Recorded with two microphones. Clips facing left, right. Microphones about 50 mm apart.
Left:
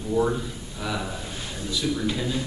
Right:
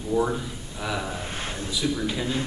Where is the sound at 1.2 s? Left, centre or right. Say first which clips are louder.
Right 3 dB; right.